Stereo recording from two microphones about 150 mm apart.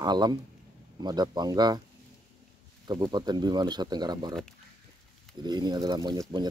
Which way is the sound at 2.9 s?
30° right (ahead or behind).